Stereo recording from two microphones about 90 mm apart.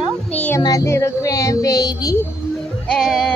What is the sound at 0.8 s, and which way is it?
Speech, 30° left (ahead or behind).